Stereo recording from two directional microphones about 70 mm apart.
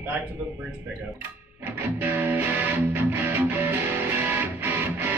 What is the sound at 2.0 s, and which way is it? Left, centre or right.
Music, right.